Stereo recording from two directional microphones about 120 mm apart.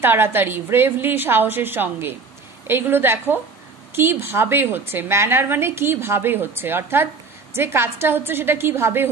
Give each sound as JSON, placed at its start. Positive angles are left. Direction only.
{"t": 0.0, "sound": "a woman's voice", "side_deg": -15}